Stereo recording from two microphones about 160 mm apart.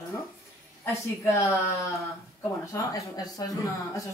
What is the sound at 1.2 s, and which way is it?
Speech, 20° left (ahead or behind).